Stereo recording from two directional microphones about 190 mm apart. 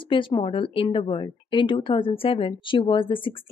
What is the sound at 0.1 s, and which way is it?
Speech, 25° left (ahead or behind).